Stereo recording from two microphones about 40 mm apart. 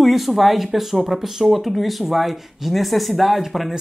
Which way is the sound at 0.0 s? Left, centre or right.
Centre.